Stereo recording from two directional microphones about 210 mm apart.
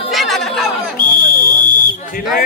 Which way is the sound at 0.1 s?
Centre (ahead or behind).